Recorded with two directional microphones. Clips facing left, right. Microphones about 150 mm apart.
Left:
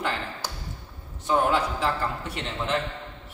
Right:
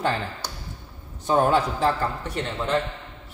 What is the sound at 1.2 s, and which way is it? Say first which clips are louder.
Speech: right 3 dB; 40° right (ahead or behind).